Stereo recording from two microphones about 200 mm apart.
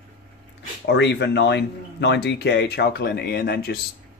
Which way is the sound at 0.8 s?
60° left (ahead or behind).